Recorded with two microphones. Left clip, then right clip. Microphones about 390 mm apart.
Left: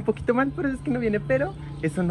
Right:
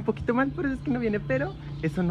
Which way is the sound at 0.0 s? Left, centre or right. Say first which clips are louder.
Left 3 dB; centre.